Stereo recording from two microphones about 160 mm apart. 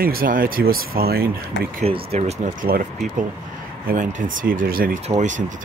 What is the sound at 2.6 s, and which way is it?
Speech, 65° right (ahead or behind).